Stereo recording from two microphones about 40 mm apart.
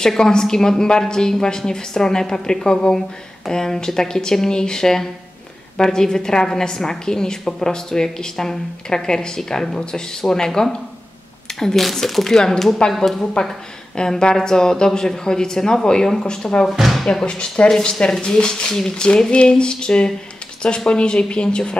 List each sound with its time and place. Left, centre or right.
0.0 s a woman's voice: centre
16.6 s speech: centre
17.0 s a woman's voice: centre